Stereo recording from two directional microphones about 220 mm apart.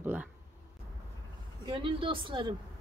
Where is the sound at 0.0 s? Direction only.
10° right (ahead or behind).